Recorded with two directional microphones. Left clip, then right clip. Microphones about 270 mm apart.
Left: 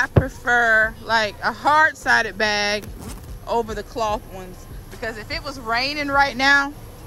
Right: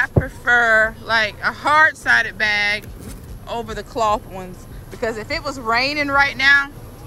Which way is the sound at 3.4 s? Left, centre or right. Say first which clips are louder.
Left 4 dB; centre.